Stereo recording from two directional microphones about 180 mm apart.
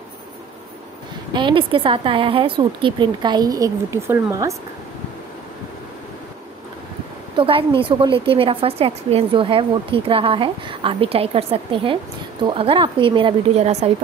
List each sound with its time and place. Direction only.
1.3 s a woman's voice: 25° right (ahead or behind)
7.3 s a woman's voice: 30° right (ahead or behind)